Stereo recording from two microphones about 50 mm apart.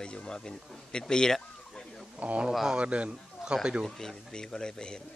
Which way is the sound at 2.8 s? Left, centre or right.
Right.